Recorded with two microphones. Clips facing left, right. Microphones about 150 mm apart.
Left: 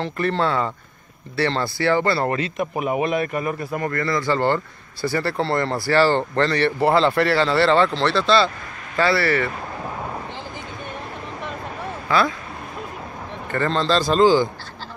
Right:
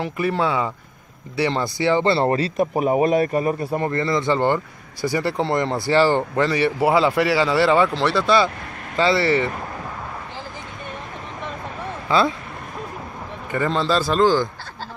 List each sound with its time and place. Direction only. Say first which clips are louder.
0.0 s speech: even; 10° right (ahead or behind)
12.1 s speech: right 1 dB; 25° right (ahead or behind)
13.5 s speech: even; 10° right (ahead or behind)